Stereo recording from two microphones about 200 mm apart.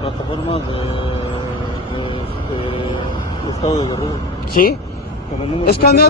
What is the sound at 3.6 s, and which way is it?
Speech, 30° left (ahead or behind).